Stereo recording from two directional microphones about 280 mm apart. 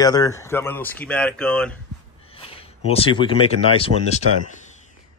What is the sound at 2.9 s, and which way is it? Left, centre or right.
Speech, centre.